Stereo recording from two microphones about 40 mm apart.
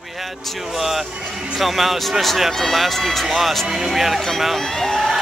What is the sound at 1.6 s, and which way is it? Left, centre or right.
Speech, centre.